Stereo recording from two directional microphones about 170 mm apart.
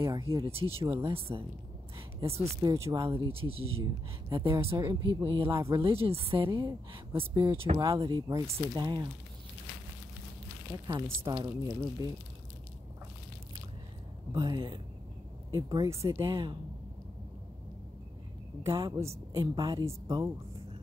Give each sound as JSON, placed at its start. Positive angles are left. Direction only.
{"t": 0.0, "sound": "speech", "side_deg": -30}
{"t": 0.7, "sound": "speech", "side_deg": -15}
{"t": 1.0, "sound": "speech", "side_deg": -35}
{"t": 2.0, "sound": "a sound", "side_deg": -35}
{"t": 2.4, "sound": "speech", "side_deg": -20}
{"t": 3.3, "sound": "speech", "side_deg": -35}
{"t": 4.7, "sound": "speech", "side_deg": -20}
{"t": 5.2, "sound": "speech", "side_deg": -30}
{"t": 5.5, "sound": "speech", "side_deg": -15}
{"t": 5.8, "sound": "speech", "side_deg": -35}
{"t": 7.8, "sound": "speech", "side_deg": -20}
{"t": 11.2, "sound": "speech", "side_deg": -25}
{"t": 14.3, "sound": "speech", "side_deg": -25}
{"t": 18.9, "sound": "a woman's voice", "side_deg": -15}